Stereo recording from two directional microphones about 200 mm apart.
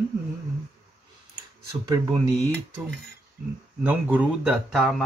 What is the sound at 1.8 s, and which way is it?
Speech, 15° right (ahead or behind).